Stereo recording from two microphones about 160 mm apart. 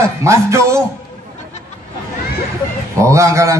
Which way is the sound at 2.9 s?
20° right (ahead or behind).